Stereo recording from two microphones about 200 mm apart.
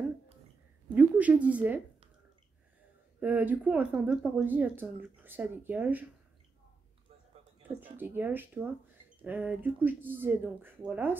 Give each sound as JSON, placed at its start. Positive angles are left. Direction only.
{"t": 0.9, "sound": "a woman's voice", "side_deg": -5}
{"t": 3.2, "sound": "speech", "side_deg": -10}
{"t": 7.6, "sound": "speech", "side_deg": -10}